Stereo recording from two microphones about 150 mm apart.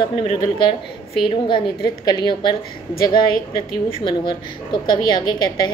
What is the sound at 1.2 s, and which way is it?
A woman's voice, 35° left (ahead or behind).